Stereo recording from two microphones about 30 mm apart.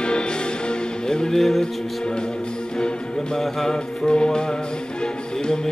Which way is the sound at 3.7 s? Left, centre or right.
Left.